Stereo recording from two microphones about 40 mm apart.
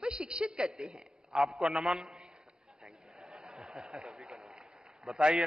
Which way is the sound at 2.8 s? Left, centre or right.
Centre.